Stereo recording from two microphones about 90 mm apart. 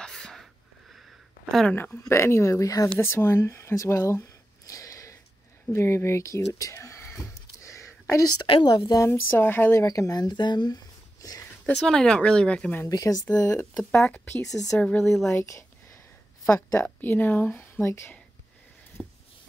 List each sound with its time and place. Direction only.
0.0 s a sound: 5° left (ahead or behind)
2.0 s speech: 30° left (ahead or behind)
3.0 s a sound: 30° left (ahead or behind)
8.6 s speech: 45° left (ahead or behind)
9.0 s speech: 30° left (ahead or behind)
9.8 s speech: 40° left (ahead or behind)
11.6 s speech: 10° left (ahead or behind)
12.9 s speech: 40° left (ahead or behind)
13.9 s speech: 10° left (ahead or behind)
15.2 s a sound: 30° left (ahead or behind)
16.8 s speech: 20° left (ahead or behind)
19.0 s a sound: 10° right (ahead or behind)